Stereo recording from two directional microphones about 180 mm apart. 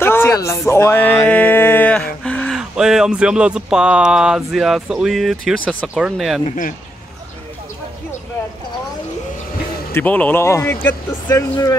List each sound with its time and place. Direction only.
0.0 s a sound: 10° left (ahead or behind)
2.2 s speech: 5° left (ahead or behind)
6.4 s speech: 45° left (ahead or behind)
9.9 s speech: 10° left (ahead or behind)